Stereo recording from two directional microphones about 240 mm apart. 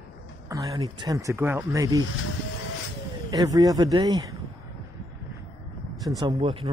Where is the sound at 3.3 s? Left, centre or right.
Centre.